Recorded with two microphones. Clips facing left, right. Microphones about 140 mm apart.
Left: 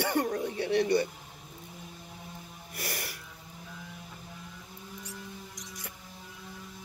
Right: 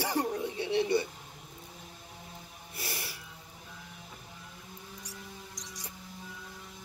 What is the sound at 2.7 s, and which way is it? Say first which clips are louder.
Music: left 3 dB; 65° left (ahead or behind).